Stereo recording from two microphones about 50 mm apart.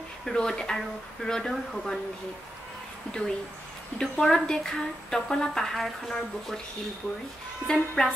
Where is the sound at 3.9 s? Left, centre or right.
Centre.